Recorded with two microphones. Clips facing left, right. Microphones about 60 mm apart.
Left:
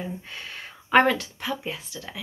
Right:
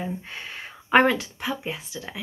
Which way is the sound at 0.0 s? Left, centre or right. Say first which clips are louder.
Right 2 dB; centre.